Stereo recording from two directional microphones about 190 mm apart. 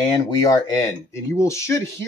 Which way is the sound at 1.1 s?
15° left (ahead or behind).